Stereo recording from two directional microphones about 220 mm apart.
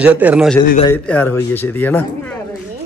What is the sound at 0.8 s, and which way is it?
A man's voice, 5° left (ahead or behind).